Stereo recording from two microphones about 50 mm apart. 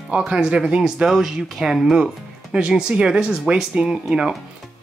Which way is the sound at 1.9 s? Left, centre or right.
Centre.